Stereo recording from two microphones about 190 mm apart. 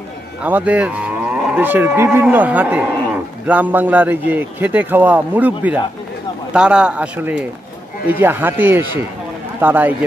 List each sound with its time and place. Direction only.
0.4 s moo: 10° right (ahead or behind)
3.4 s a man's voice: 10° right (ahead or behind)